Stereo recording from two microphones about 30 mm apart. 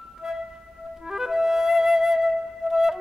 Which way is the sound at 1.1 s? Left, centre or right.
Centre.